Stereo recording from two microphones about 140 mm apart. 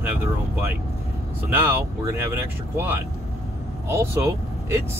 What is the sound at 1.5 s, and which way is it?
Speech, 15° right (ahead or behind).